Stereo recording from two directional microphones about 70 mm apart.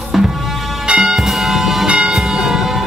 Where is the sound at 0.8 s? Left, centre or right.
Centre.